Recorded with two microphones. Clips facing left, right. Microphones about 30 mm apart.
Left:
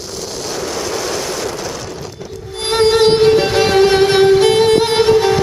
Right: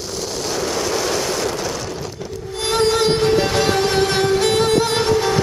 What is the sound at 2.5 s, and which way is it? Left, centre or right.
Music, left.